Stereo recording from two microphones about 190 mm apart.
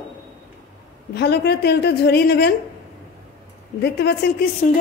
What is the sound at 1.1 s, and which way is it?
A woman's voice, 60° left (ahead or behind).